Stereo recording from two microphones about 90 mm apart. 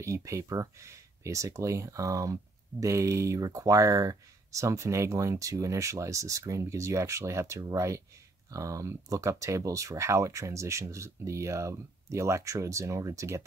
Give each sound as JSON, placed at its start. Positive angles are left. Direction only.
{"t": 0.0, "sound": "speech", "side_deg": -35}